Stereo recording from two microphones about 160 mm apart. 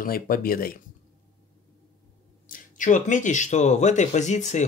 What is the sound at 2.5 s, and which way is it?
Speech, 55° left (ahead or behind).